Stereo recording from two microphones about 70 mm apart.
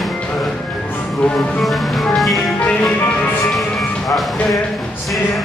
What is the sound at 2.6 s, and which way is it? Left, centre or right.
Music, left.